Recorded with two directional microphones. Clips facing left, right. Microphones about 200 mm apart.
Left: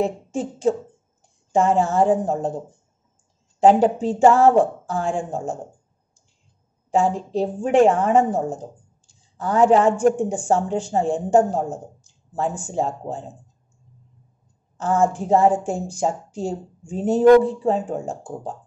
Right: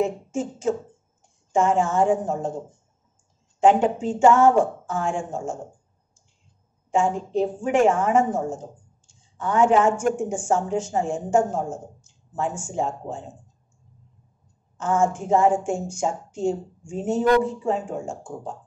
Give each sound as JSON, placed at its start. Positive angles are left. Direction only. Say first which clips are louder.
{"t": 0.0, "sound": "a woman's voice", "louder": "left 1 dB", "side_deg": 35}
{"t": 3.5, "sound": "a woman's voice", "louder": "left 3 dB", "side_deg": 35}
{"t": 6.9, "sound": "a woman's voice", "louder": "left 2 dB", "side_deg": 35}
{"t": 14.8, "sound": "a woman's voice", "louder": "left 2 dB", "side_deg": 35}